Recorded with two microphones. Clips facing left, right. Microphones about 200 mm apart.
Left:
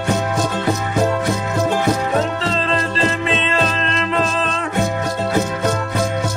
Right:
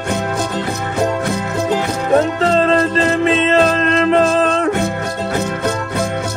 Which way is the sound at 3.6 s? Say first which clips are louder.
Right 7 dB; 50° right (ahead or behind).